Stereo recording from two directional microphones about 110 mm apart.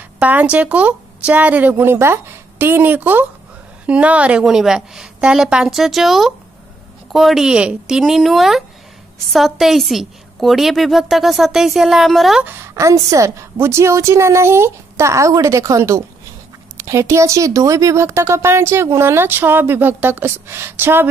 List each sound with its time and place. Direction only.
0.2 s a woman's voice: 15° right (ahead or behind)
12.4 s speech: 25° right (ahead or behind)